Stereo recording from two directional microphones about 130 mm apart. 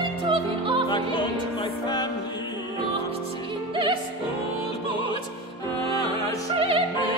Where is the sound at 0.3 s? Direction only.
40° right (ahead or behind).